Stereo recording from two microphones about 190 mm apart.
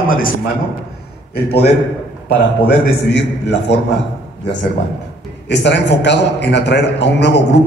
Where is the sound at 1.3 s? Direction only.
60° left (ahead or behind).